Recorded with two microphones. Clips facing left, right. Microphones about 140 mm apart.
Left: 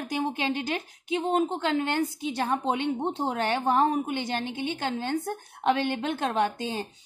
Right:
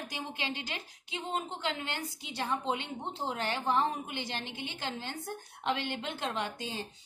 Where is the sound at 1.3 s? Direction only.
50° left (ahead or behind).